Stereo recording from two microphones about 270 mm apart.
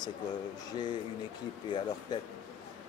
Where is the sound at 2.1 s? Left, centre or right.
Centre.